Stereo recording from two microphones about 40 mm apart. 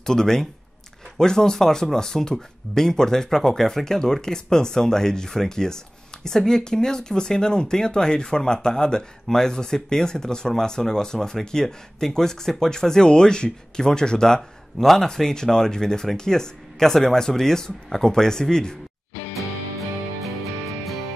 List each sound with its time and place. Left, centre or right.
0.0 s speech: centre